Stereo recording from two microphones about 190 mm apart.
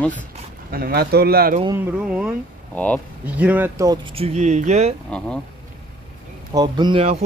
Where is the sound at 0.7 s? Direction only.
50° right (ahead or behind).